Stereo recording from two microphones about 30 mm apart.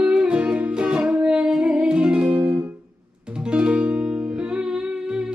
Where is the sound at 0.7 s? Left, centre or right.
Right.